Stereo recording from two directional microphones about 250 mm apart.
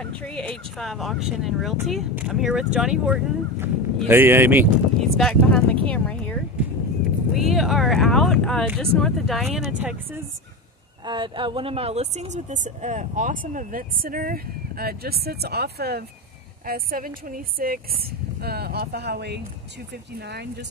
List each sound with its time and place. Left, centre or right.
0.0 s speech: centre
7.3 s speech: centre
11.1 s speech: centre; by 20.4 s right